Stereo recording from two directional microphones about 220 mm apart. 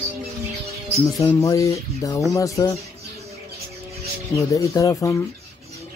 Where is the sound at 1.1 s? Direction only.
15° left (ahead or behind).